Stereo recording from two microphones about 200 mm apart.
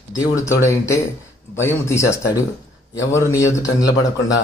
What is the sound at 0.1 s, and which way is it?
A man's voice, 15° left (ahead or behind).